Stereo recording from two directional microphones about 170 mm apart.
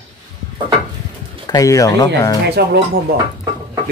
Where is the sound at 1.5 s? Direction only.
20° left (ahead or behind).